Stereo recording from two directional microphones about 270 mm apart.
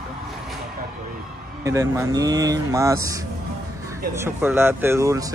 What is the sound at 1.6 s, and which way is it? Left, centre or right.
Speech, centre.